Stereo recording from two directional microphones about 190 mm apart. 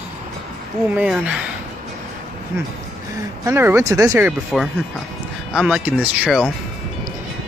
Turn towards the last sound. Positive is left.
turn(degrees=-5)  # may be behind; listen again after turning